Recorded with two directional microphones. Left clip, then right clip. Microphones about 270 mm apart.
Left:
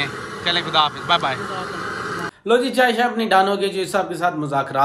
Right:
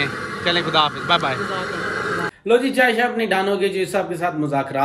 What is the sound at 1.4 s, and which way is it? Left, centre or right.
Speech, centre.